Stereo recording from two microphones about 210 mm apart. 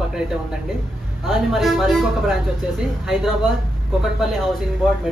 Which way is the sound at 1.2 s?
Centre (ahead or behind).